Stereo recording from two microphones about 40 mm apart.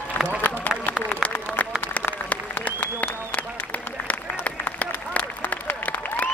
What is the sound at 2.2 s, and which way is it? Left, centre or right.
Applause, left.